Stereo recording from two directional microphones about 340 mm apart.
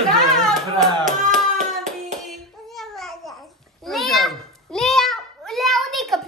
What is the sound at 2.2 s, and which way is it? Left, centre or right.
Babbling, centre.